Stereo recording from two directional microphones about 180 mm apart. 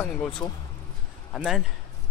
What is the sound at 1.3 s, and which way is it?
Speech, centre (ahead or behind).